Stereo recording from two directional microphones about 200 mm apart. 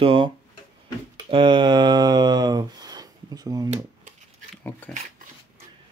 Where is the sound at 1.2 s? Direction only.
25° right (ahead or behind).